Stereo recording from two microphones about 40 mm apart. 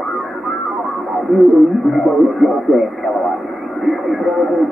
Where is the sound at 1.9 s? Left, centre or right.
Centre.